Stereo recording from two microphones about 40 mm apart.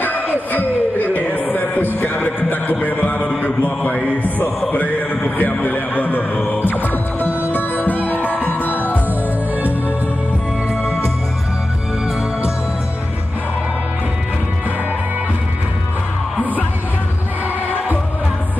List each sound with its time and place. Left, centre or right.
0.0 s music: left
3.3 s mantra: left
4.7 s a man's voice: left
6.5 s music: left